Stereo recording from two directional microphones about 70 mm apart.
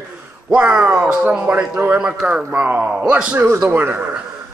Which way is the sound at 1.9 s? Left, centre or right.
Centre.